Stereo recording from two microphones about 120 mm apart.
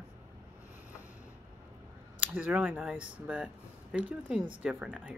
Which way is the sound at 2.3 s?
10° right (ahead or behind).